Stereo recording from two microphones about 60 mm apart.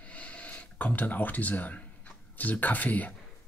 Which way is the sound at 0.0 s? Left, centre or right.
Left.